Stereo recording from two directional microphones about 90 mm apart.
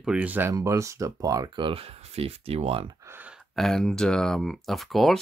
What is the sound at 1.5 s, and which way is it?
Speech, 80° right.